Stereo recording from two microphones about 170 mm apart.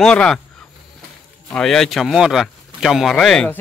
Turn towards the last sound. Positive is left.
turn(degrees=5)  # may be behind; listen again after turning